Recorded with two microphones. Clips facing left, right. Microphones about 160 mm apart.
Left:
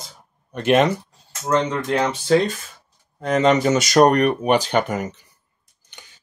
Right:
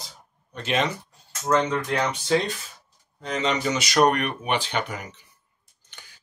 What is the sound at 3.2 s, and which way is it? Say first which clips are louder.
Speech: left 9 dB; 50° left (ahead or behind).